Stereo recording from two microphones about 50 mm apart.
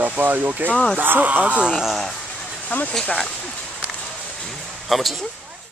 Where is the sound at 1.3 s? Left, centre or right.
Right.